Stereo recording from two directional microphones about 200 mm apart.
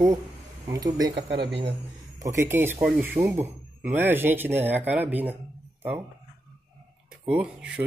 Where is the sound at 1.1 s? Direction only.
55° right (ahead or behind).